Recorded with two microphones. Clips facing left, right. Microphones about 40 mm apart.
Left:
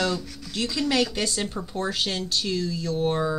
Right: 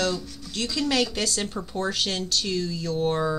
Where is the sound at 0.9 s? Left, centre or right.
Centre.